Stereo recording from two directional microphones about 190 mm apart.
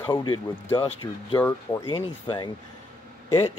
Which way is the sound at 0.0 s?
20° left (ahead or behind).